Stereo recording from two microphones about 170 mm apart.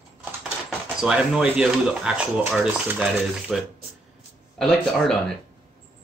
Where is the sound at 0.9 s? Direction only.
5° right (ahead or behind).